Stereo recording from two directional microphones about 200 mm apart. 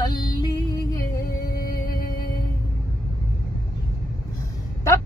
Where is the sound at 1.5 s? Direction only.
45° left (ahead or behind).